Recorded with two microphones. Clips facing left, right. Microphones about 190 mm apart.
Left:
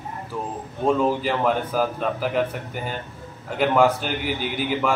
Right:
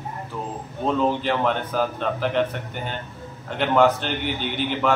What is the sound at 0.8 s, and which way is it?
A man's voice, 5° left (ahead or behind).